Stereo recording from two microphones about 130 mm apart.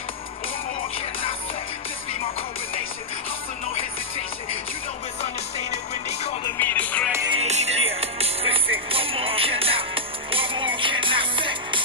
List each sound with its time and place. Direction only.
5.2 s music: 55° left (ahead or behind)
6.4 s music: 15° left (ahead or behind)
7.3 s music: 55° right (ahead or behind); by 11.8 s 40° right (ahead or behind)